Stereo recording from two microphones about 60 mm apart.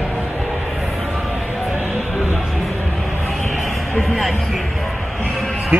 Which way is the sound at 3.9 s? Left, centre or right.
Centre.